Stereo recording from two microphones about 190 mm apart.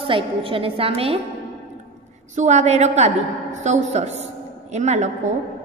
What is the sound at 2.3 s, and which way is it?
A woman's voice, 35° right (ahead or behind).